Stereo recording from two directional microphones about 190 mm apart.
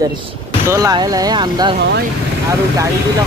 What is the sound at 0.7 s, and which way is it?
Speech, 20° right (ahead or behind).